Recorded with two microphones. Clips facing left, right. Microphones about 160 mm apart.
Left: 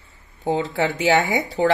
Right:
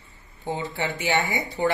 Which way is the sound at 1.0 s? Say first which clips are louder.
Left 6 dB; 90° left.